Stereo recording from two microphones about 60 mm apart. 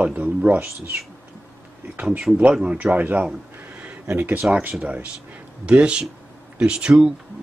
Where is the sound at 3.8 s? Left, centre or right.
Right.